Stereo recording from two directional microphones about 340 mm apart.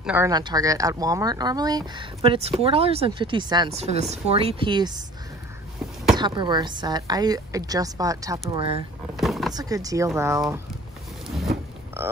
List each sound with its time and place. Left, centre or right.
0.0 s speech: centre
6.1 s speech: centre
9.1 s a sound: centre
9.5 s speech: centre